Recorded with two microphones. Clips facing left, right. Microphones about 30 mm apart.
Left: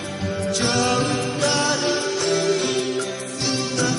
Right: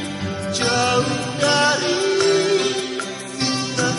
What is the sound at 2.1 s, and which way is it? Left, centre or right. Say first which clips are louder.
Music: right 4 dB; right.